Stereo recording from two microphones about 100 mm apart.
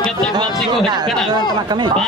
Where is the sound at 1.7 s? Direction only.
45° right (ahead or behind).